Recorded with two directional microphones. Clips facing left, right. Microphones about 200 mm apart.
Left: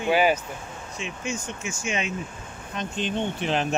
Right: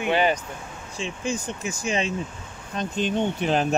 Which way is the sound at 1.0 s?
35° right (ahead or behind).